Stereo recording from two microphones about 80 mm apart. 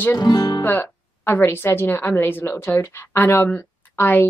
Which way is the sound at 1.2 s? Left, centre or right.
Left.